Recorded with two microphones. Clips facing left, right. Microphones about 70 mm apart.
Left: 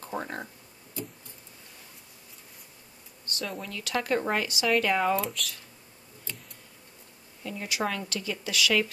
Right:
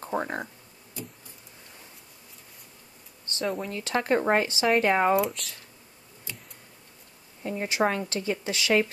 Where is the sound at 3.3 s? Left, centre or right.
Right.